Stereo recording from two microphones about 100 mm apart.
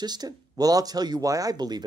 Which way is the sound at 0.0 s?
45° right (ahead or behind).